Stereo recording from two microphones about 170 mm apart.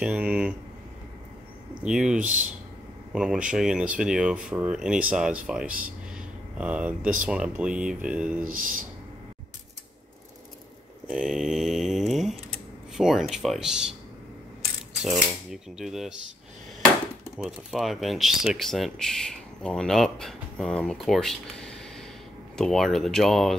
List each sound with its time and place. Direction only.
0.0 s speech: 5° right (ahead or behind)
1.9 s speech: 5° right (ahead or behind)
2.2 s speech: 50° right (ahead or behind)
3.1 s speech: 5° right (ahead or behind)
7.0 s speech: 50° right (ahead or behind)
7.2 s speech: 5° right (ahead or behind)
8.5 s speech: 55° right (ahead or behind)
11.1 s mantra: 5° right (ahead or behind)
12.9 s speech: centre (ahead or behind)
15.5 s speech: centre (ahead or behind)
17.5 s speech: centre (ahead or behind)